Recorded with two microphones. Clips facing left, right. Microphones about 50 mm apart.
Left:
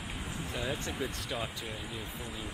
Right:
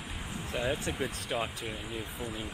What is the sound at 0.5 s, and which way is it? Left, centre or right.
Speech, centre.